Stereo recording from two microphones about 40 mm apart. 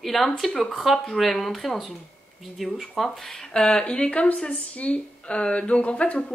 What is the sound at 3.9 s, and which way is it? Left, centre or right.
Speech, left.